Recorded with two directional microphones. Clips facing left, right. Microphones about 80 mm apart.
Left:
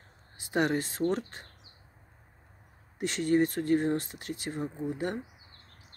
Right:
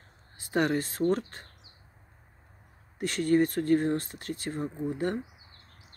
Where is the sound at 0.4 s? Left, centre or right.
Centre.